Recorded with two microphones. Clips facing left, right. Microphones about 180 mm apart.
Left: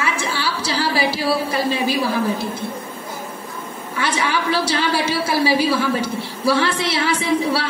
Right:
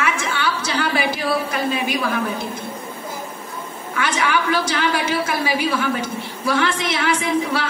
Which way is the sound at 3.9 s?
30° left (ahead or behind).